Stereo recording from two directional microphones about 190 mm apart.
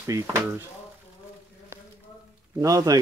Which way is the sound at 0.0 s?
15° right (ahead or behind).